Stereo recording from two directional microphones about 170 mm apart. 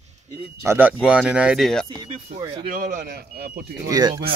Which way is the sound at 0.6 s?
10° right (ahead or behind).